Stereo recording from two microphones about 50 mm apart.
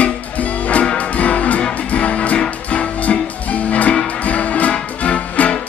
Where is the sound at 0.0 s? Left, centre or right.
Left.